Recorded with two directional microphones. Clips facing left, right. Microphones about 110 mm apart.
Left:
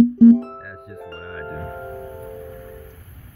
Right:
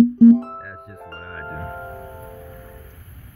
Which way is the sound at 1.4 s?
25° right (ahead or behind).